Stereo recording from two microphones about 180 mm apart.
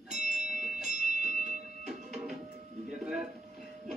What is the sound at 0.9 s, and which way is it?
Music, 45° right (ahead or behind).